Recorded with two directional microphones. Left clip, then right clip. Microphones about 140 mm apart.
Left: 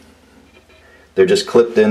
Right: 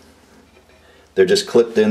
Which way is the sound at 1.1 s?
Centre (ahead or behind).